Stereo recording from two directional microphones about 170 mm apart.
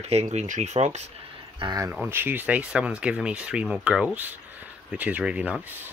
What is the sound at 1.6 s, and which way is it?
Speech, 20° right (ahead or behind).